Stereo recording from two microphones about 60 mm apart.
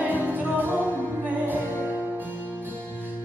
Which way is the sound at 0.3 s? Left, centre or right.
Right.